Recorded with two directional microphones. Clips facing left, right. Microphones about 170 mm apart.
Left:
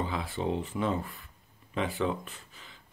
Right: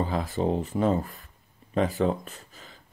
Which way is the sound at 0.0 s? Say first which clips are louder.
Right 5 dB; 40° right (ahead or behind).